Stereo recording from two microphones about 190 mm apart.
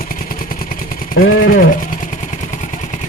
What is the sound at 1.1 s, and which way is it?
Speech, 55° left (ahead or behind).